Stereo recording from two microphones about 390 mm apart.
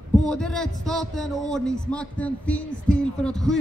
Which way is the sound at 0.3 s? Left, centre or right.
Centre.